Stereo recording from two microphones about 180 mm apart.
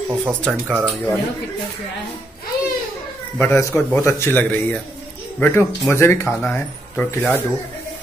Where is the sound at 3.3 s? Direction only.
10° left (ahead or behind).